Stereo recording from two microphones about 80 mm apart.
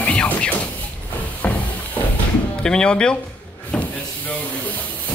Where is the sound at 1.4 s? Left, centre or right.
Centre.